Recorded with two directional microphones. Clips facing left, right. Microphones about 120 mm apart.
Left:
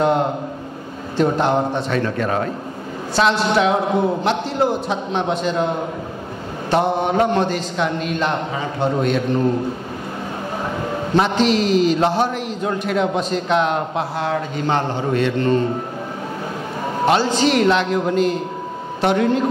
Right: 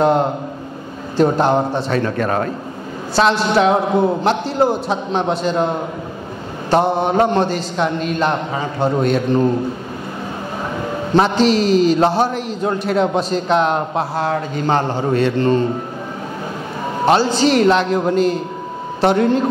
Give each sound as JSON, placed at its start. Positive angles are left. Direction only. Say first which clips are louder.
{"t": 1.1, "sound": "a man's voice", "louder": "right 3 dB", "side_deg": -40}
{"t": 3.2, "sound": "a man's voice", "louder": "right 2 dB", "side_deg": -35}
{"t": 6.7, "sound": "a man's voice", "louder": "right 2 dB", "side_deg": -35}
{"t": 11.1, "sound": "a man's voice", "louder": "right 3 dB", "side_deg": -35}
{"t": 17.0, "sound": "a man's voice", "louder": "right 2 dB", "side_deg": -35}